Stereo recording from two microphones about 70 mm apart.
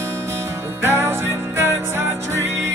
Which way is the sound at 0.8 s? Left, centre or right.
Right.